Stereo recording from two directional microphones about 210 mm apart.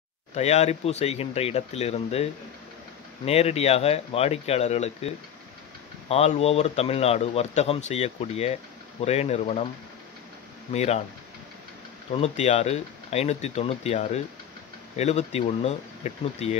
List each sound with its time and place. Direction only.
0.3 s speech: 30° left (ahead or behind)
3.3 s speech: 30° left (ahead or behind)
10.7 s speech: 30° left (ahead or behind)
12.1 s speech: 30° left (ahead or behind)